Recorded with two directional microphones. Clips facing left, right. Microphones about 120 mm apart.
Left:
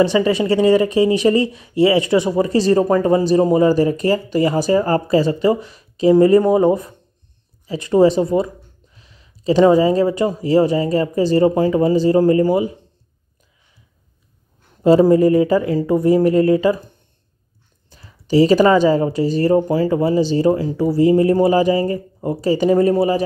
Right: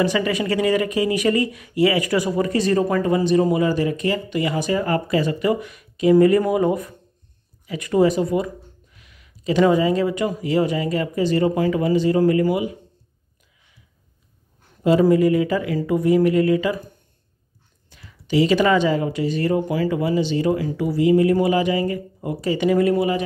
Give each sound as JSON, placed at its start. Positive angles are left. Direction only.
{"t": 0.0, "sound": "speech", "side_deg": 30}
{"t": 14.8, "sound": "speech", "side_deg": 35}
{"t": 17.8, "sound": "speech", "side_deg": 35}